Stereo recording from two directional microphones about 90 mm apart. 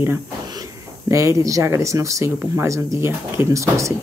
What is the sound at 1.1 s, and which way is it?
Speech, 35° right (ahead or behind).